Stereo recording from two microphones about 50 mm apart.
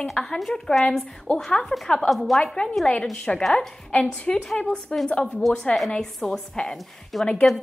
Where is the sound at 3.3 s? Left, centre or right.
Centre.